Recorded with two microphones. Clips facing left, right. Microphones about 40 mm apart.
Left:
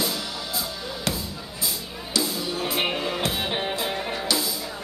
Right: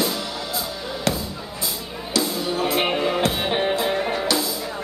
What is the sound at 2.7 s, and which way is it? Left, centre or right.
Music, centre.